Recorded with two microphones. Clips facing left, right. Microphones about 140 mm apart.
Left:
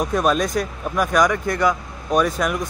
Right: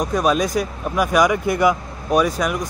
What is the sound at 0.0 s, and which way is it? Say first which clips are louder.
Speech: right 1 dB; centre (ahead or behind).